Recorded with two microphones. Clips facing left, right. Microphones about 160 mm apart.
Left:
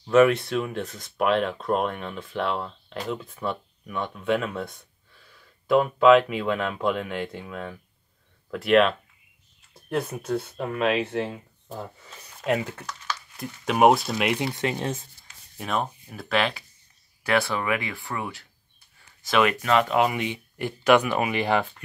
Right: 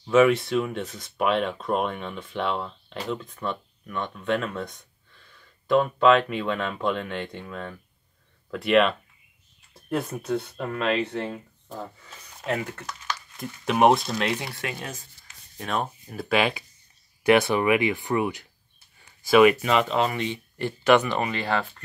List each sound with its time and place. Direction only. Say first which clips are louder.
0.0 s speech: left 1 dB; centre (ahead or behind)
13.4 s speech: left 1 dB; 5° left (ahead or behind); by 15.0 s 25° left (ahead or behind)
15.5 s speech: left 1 dB; 5° left (ahead or behind)
19.9 s speech: left 2 dB; 10° left (ahead or behind)